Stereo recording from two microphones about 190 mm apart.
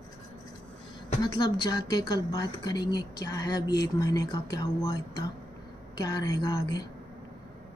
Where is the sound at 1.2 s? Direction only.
25° left (ahead or behind).